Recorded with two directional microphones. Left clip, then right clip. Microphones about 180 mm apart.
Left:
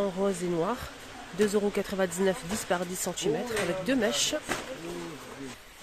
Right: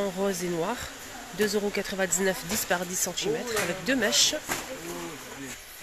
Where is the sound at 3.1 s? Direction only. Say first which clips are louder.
Left 1 dB; 30° left (ahead or behind).